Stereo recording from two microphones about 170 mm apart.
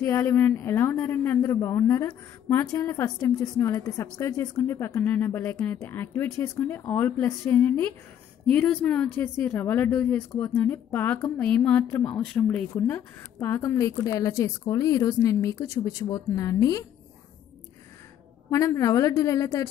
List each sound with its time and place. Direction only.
0.0 s speech: 15° left (ahead or behind)
18.5 s a woman's voice: 20° left (ahead or behind)